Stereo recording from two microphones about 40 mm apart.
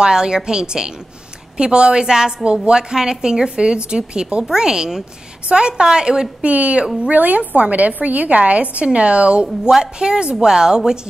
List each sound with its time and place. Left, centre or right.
0.0 s a woman's voice: centre
6.4 s a woman's voice: right
9.7 s a woman's voice: centre